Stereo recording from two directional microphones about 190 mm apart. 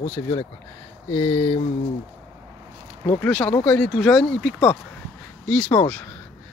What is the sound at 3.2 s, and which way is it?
Speech, 5° left (ahead or behind).